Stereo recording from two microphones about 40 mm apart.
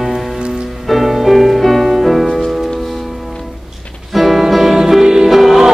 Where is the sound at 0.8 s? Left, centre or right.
Centre.